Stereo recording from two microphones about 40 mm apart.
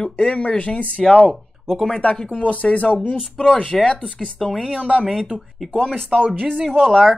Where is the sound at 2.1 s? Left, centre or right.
Left.